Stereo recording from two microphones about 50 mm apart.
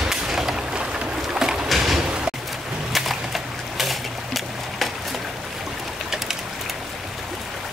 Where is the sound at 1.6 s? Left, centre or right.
Centre.